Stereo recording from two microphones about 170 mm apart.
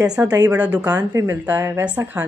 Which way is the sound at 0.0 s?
5° right (ahead or behind).